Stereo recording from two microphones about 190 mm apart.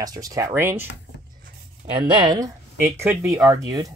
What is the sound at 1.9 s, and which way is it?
Speech, 25° right (ahead or behind).